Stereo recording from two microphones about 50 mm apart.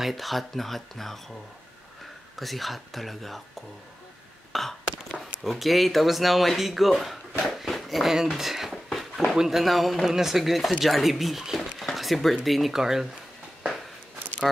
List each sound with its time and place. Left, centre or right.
0.0 s speech: centre
2.3 s speech: centre
4.5 s burping: centre
5.4 s speech: centre
8.4 s a sound: centre
9.3 s speech: centre
11.8 s a sound: centre
12.4 s speech: centre